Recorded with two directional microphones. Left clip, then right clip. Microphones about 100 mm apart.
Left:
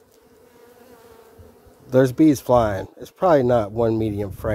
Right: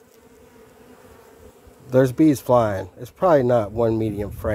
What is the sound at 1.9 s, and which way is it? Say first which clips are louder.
Speech: left 1 dB; 20° left (ahead or behind).